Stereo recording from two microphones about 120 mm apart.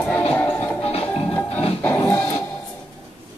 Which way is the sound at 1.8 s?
15° left (ahead or behind).